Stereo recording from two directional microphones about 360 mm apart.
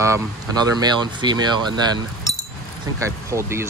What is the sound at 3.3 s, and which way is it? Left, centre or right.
Speech, centre.